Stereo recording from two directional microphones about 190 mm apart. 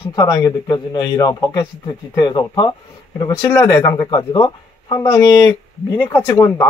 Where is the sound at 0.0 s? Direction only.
20° left (ahead or behind).